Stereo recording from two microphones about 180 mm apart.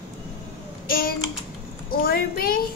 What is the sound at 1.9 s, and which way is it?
Speech, 55° left (ahead or behind).